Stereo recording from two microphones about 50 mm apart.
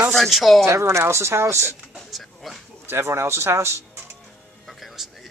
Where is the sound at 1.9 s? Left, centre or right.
Centre.